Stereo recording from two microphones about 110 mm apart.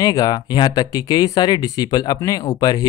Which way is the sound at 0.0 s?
35° left (ahead or behind).